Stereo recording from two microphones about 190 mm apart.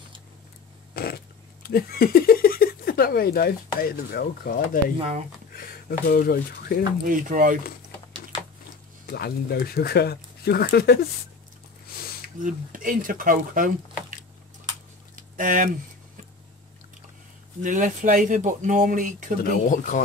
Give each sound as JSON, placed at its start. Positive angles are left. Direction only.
{"t": 0.9, "sound": "speech", "side_deg": 55}
{"t": 4.9, "sound": "speech", "side_deg": -35}
{"t": 5.5, "sound": "speech", "side_deg": 50}
{"t": 7.1, "sound": "speech", "side_deg": -45}
{"t": 9.0, "sound": "speech", "side_deg": 55}
{"t": 12.4, "sound": "speech", "side_deg": -45}
{"t": 15.1, "sound": "a sound", "side_deg": -45}
{"t": 17.6, "sound": "speech", "side_deg": -45}
{"t": 19.4, "sound": "speech", "side_deg": 50}